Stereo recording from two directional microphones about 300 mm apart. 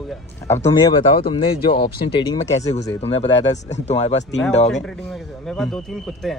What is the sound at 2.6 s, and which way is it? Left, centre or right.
Speech, left.